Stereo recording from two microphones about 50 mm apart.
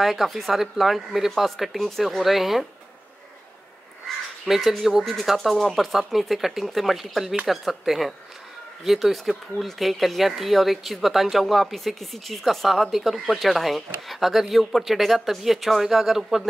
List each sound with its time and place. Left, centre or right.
0.0 s speech: centre
4.5 s speech: centre